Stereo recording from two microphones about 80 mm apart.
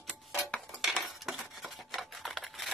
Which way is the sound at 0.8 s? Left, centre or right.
Centre.